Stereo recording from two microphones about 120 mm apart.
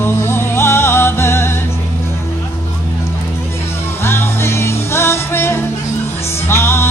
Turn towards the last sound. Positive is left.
turn(degrees=20)  # may be behind; listen again after turning